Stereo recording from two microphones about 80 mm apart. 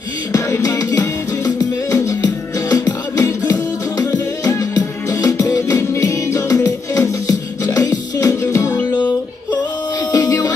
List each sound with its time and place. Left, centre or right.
0.3 s music: left
4.6 s music: left
10.1 s music: left